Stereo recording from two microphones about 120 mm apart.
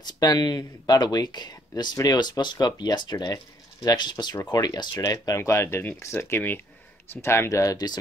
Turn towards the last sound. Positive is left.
turn(degrees=30)  # may be behind; listen again after turning